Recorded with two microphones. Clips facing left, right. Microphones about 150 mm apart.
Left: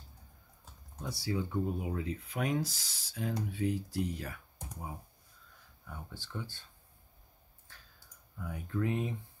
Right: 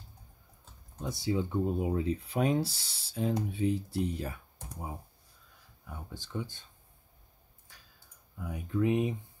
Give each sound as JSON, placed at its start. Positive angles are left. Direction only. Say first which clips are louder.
{"t": 1.0, "sound": "speech", "louder": "right 4 dB", "side_deg": -20}
{"t": 5.9, "sound": "speech", "louder": "right 2 dB", "side_deg": -15}
{"t": 7.7, "sound": "a sound", "louder": "left 1 dB", "side_deg": -15}
{"t": 8.4, "sound": "speech", "louder": "right 4 dB", "side_deg": -15}